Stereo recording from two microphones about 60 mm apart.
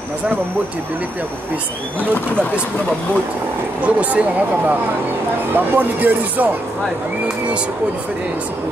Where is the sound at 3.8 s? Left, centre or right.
Right.